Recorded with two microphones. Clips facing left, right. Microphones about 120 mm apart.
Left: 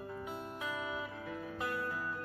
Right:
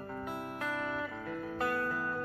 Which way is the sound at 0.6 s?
65° right (ahead or behind).